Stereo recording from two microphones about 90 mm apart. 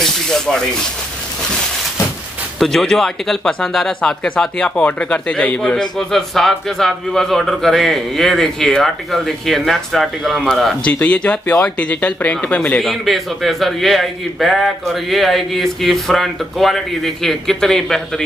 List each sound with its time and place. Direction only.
0.0 s sanding: 5° left (ahead or behind)
2.6 s speech: 5° left (ahead or behind)
10.8 s speech: 15° left (ahead or behind)